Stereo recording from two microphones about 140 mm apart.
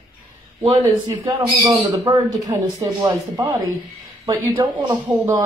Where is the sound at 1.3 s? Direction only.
25° right (ahead or behind).